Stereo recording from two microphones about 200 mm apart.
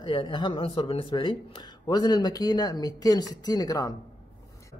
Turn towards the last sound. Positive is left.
turn(degrees=15)  # may be behind; listen again after turning